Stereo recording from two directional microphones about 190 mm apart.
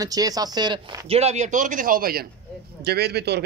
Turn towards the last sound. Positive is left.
turn(degrees=-60)  # may be behind; listen again after turning